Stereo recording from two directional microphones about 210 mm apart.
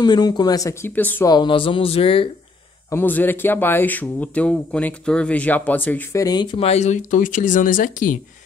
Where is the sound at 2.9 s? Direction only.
10° left (ahead or behind).